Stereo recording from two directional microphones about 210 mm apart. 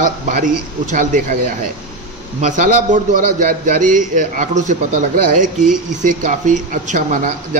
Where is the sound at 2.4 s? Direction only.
35° right (ahead or behind).